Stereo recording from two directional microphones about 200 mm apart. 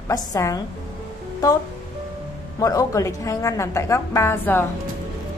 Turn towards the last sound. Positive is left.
turn(degrees=10)  # may be behind; listen again after turning